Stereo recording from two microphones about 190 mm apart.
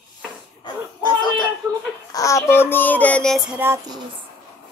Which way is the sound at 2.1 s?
15° left (ahead or behind).